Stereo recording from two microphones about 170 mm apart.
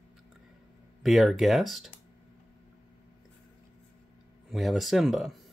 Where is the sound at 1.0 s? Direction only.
Centre (ahead or behind).